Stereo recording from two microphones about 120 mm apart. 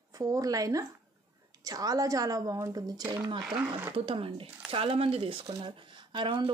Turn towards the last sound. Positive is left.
turn(degrees=-45)  # may be behind; listen again after turning